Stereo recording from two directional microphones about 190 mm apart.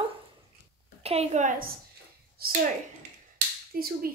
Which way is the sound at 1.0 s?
35° right (ahead or behind).